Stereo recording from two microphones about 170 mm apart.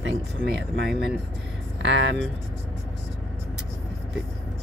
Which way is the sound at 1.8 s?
90° right.